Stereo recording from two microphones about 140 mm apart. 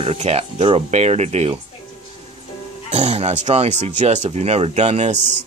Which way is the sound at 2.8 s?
50° right (ahead or behind).